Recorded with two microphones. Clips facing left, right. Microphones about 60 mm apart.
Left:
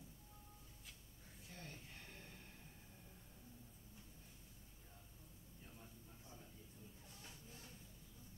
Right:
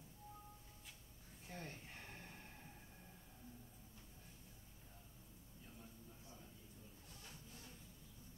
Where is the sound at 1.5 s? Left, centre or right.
Right.